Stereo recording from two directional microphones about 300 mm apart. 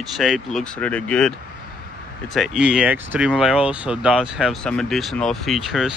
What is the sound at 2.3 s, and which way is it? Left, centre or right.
Speech, centre.